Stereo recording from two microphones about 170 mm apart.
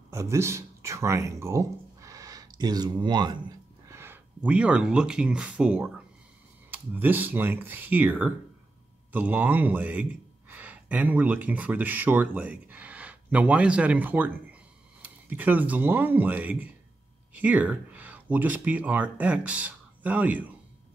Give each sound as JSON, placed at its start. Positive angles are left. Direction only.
{"t": 0.1, "sound": "speech", "side_deg": -15}